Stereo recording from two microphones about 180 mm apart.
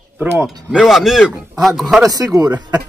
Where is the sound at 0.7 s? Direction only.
5° right (ahead or behind).